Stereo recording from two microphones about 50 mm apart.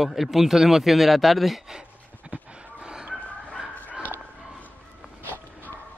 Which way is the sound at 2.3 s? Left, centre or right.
Centre.